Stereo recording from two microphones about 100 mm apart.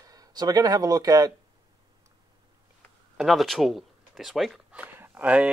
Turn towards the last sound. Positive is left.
turn(degrees=-15)  # may be behind; listen again after turning